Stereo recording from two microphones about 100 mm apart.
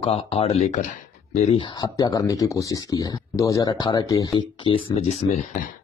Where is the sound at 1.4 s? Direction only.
60° left (ahead or behind).